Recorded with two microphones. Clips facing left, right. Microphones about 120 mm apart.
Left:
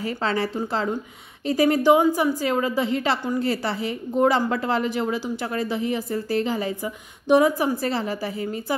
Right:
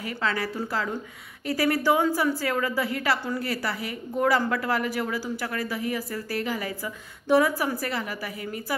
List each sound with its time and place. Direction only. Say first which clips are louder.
0.0 s a woman's voice: left 4 dB; 30° left (ahead or behind)
1.5 s a woman's voice: left 6 dB; 20° left (ahead or behind)